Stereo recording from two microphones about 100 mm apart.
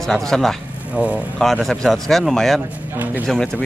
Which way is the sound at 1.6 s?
5° left (ahead or behind).